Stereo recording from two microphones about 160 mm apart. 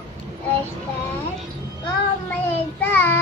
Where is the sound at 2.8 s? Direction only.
10° left (ahead or behind).